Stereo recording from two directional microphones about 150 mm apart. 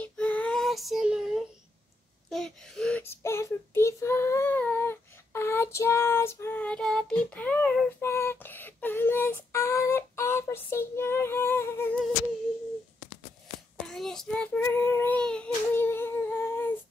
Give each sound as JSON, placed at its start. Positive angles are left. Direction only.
{"t": 0.0, "sound": "child singing", "side_deg": 10}
{"t": 2.2, "sound": "a sound", "side_deg": 5}
{"t": 8.0, "sound": "female singing", "side_deg": 15}
{"t": 13.8, "sound": "child singing", "side_deg": 5}